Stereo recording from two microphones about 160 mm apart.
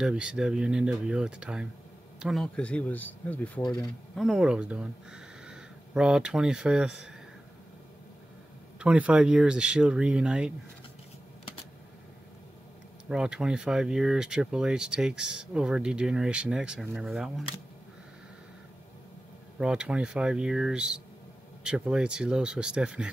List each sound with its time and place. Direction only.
0.0 s speech: 5° right (ahead or behind); by 3.7 s 10° left (ahead or behind)
4.1 s speech: centre (ahead or behind)
8.7 s speech: 5° right (ahead or behind)
13.1 s speech: 5° right (ahead or behind)
19.6 s speech: 5° right (ahead or behind)